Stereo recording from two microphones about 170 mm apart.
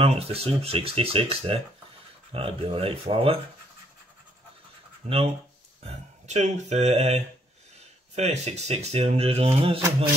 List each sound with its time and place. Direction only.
0.0 s speech: 35° right (ahead or behind)
5.0 s speech: 45° right (ahead or behind)